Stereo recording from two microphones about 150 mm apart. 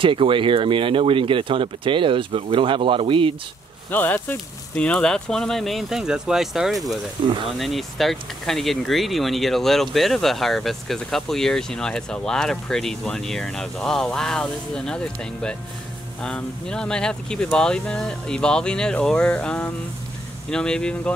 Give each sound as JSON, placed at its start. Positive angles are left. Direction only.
{"t": 0.0, "sound": "speech", "side_deg": -35}
{"t": 3.9, "sound": "speech", "side_deg": 10}
{"t": 7.2, "sound": "speech", "side_deg": -35}
{"t": 7.5, "sound": "speech", "side_deg": 0}